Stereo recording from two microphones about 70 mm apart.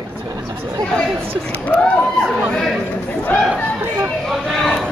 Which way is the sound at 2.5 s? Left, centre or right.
Centre.